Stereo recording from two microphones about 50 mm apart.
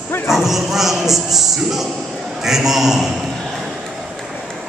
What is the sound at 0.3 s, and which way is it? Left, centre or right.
A man's voice, centre.